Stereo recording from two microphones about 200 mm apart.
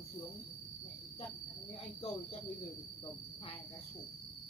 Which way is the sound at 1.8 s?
30° left (ahead or behind).